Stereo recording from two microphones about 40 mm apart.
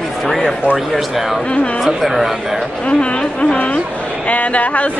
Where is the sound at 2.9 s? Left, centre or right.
Left.